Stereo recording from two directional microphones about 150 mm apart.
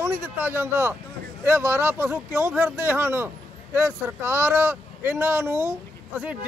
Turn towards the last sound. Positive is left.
turn(degrees=-10)  # may be behind; listen again after turning